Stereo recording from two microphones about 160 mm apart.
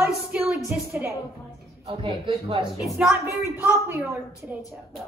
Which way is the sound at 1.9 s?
35° right (ahead or behind).